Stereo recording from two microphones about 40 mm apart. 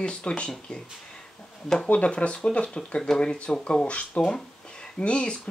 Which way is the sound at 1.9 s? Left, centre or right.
Left.